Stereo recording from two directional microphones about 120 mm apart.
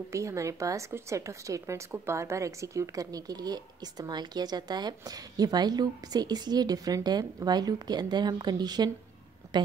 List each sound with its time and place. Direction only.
0.1 s a woman's voice: 25° right (ahead or behind)